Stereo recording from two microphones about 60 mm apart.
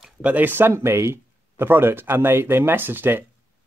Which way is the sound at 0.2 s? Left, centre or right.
Right.